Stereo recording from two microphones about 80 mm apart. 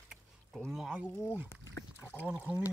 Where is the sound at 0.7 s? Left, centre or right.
Centre.